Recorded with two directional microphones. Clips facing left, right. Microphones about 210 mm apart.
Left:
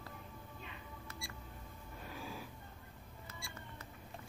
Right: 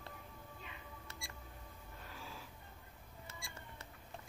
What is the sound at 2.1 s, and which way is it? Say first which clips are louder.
Snort: left 6 dB; 15° left (ahead or behind).